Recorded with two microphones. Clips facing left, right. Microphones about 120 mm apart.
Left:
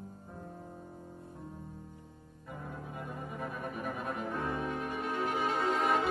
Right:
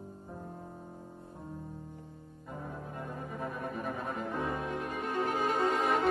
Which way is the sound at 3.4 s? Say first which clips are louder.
Right 2 dB; 5° left (ahead or behind).